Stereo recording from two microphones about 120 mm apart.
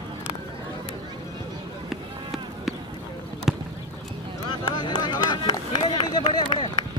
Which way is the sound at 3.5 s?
5° right (ahead or behind).